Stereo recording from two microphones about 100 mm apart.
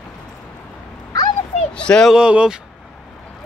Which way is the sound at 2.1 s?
10° right (ahead or behind).